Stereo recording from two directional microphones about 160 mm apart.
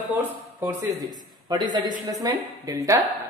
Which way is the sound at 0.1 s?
15° right (ahead or behind).